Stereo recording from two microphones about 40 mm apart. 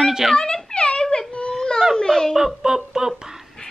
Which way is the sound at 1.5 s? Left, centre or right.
Centre.